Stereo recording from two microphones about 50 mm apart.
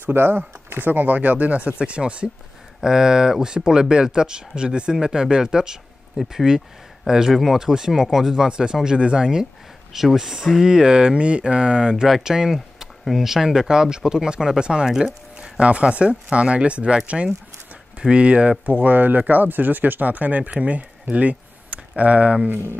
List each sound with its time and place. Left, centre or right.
0.0 s speech: right
2.8 s speech: centre; by 22.4 s right